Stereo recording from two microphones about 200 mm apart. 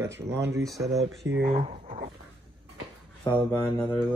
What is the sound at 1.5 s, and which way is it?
Speech, 30° right (ahead or behind).